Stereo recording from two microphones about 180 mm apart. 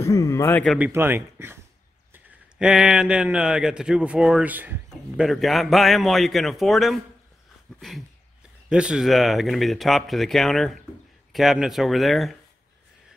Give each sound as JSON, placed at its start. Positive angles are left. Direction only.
{"t": 0.0, "sound": "a man's voice", "side_deg": 15}
{"t": 0.7, "sound": "a man's voice", "side_deg": -10}
{"t": 8.6, "sound": "a man's voice", "side_deg": -5}